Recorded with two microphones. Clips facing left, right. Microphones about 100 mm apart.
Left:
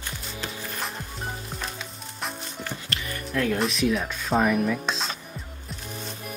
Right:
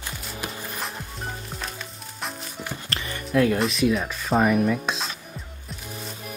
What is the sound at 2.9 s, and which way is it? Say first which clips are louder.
Music: right 3 dB; 35° right (ahead or behind).